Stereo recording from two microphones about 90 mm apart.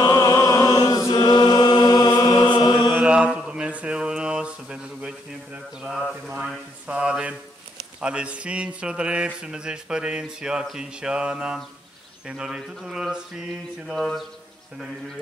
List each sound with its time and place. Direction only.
0.0 s chant: 40° left (ahead or behind)
2.9 s mantra: 15° right (ahead or behind)
8.0 s speech: 10° right (ahead or behind)
13.8 s speech: centre (ahead or behind)